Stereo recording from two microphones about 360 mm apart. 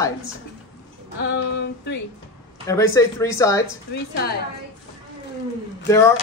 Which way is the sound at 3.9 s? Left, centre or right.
Left.